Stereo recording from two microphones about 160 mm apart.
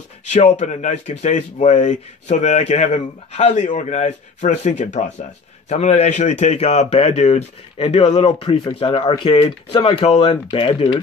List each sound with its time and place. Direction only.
0.3 s speech: 50° left (ahead or behind)